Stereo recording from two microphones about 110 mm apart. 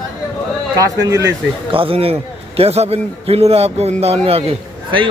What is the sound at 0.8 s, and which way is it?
Speech, 30° right (ahead or behind).